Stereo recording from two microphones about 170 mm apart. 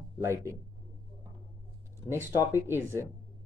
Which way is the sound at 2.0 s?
15° right (ahead or behind).